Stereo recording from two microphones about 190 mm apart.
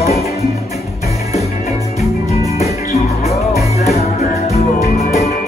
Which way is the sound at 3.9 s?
35° left (ahead or behind).